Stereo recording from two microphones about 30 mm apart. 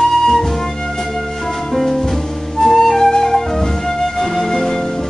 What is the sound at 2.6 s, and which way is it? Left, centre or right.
Flute, centre.